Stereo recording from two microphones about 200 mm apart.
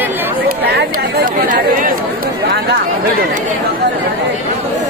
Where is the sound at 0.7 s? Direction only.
50° right (ahead or behind).